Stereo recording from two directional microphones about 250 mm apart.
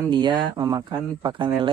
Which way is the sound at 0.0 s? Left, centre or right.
Centre.